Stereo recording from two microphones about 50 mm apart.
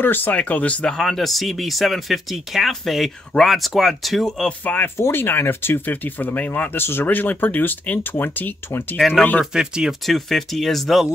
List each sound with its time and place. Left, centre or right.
0.0 s speech: left
0.8 s speech: centre
4.5 s speech: left
4.8 s speech: left
9.5 s speech: centre
10.0 s speech: centre